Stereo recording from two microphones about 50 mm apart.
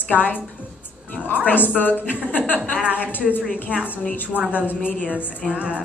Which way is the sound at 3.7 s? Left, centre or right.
Right.